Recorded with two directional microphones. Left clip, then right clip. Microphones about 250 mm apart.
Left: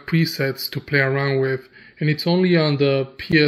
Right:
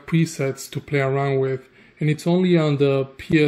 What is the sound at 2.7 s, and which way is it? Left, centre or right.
Speech, left.